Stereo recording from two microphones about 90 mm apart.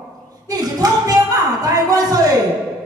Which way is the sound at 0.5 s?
45° right (ahead or behind).